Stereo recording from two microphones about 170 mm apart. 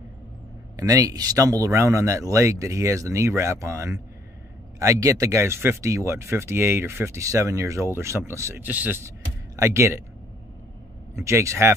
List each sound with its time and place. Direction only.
0.7 s speech: 20° right (ahead or behind)
11.1 s speech: 15° right (ahead or behind)